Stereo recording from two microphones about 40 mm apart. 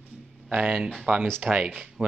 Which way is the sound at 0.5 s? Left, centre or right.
Right.